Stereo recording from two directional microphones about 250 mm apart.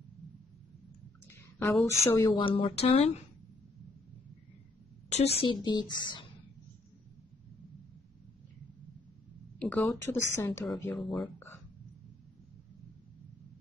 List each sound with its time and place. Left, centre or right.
1.6 s speech: centre; by 3.2 s left
5.1 s speech: left
9.6 s speech: centre